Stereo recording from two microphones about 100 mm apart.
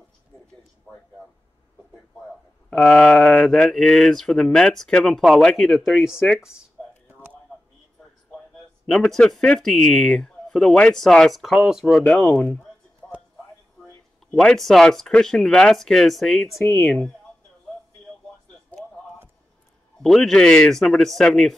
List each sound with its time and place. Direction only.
2.7 s speech: 5° left (ahead or behind)
8.9 s speech: 5° left (ahead or behind)
13.0 s music: 15° left (ahead or behind)
14.3 s speech: 5° left (ahead or behind)
16.5 s speech: 30° left (ahead or behind)
16.8 s speech: centre (ahead or behind)
18.7 s a sound: 15° left (ahead or behind)
20.0 s speech: 5° left (ahead or behind)